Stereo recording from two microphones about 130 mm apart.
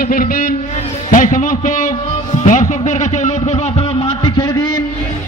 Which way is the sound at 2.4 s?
75° left (ahead or behind).